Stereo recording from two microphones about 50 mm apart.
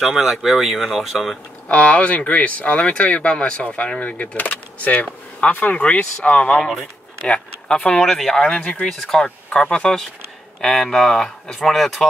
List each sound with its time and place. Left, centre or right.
0.0 s speech: centre
1.7 s speech: left
6.6 s speech: centre
7.2 s speech: centre
8.0 s speech: centre
8.5 s speech: left
11.7 s speech: centre